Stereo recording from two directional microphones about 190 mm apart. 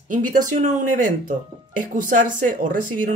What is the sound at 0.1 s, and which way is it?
Speech, 45° right (ahead or behind).